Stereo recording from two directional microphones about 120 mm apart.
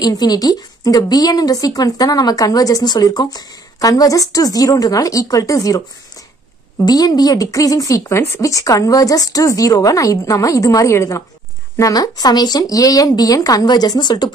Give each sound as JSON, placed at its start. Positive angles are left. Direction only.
{"t": 0.0, "sound": "speech", "side_deg": 35}
{"t": 6.8, "sound": "speech", "side_deg": 35}